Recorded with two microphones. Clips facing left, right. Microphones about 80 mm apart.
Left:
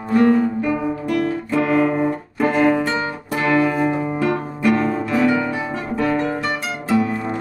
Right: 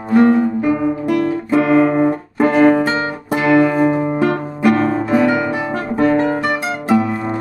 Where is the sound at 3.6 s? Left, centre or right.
Right.